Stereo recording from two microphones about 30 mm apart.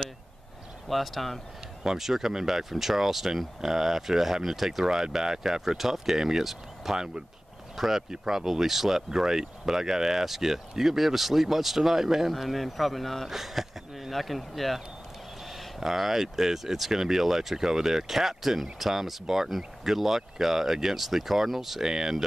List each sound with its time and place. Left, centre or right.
0.8 s speech: centre
1.8 s speech: centre
4.8 s speech: right; by 13.3 s centre
13.3 s speech: centre
15.8 s speech: centre